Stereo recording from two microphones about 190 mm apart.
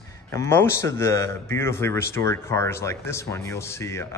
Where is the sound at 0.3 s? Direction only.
15° left (ahead or behind).